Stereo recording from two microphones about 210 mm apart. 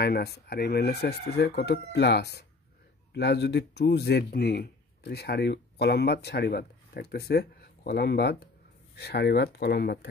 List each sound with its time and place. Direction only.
0.0 s speech: 50° left (ahead or behind)